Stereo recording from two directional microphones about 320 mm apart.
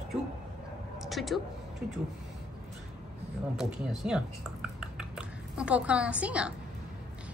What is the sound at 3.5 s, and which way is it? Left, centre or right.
Speech, centre.